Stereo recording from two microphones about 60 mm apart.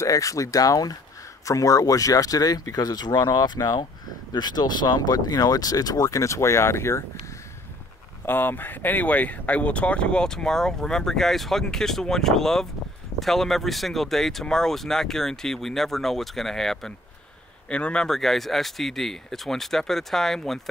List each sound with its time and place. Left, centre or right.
0.0 s speech: left
1.4 s speech: left
5.1 s speech: left
8.3 s speech: left; by 16.9 s centre
17.6 s a man's voice: centre
18.0 s speech: centre